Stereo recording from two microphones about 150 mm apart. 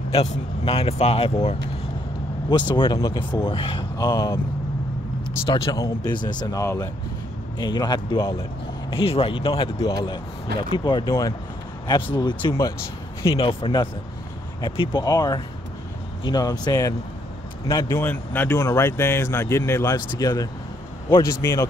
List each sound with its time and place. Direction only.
0.1 s speech: 40° left (ahead or behind)
2.5 s speech: 30° left (ahead or behind)
5.4 s speech: 35° left (ahead or behind)
8.9 s speech: 40° left (ahead or behind)
9.8 s speech: 25° left (ahead or behind)